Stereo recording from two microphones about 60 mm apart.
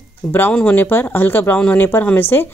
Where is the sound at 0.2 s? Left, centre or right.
Left.